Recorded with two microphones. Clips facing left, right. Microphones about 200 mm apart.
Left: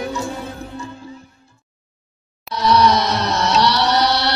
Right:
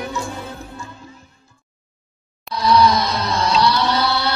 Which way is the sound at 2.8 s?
70° left (ahead or behind).